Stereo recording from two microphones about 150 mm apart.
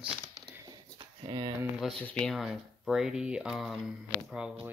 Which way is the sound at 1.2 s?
30° right (ahead or behind).